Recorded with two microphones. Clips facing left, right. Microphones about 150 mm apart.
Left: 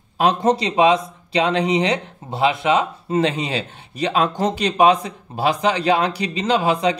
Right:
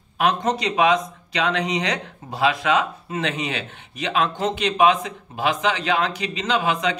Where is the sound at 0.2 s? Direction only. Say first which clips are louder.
Left 4 dB; 30° left (ahead or behind).